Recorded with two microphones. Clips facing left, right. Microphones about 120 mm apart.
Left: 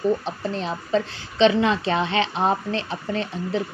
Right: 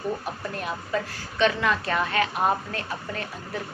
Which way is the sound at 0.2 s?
25° left (ahead or behind).